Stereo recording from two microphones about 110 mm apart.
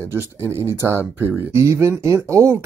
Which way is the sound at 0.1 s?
20° right (ahead or behind).